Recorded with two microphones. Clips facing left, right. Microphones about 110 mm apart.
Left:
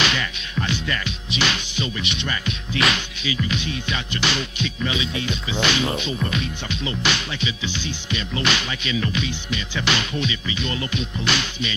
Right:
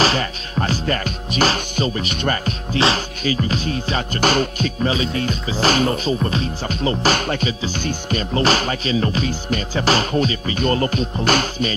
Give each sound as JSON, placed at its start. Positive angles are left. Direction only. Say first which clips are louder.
{"t": 0.0, "sound": "music", "louder": "right 6 dB", "side_deg": -40}